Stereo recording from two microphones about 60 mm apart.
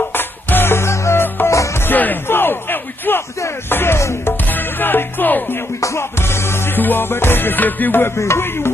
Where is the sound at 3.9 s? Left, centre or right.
Left.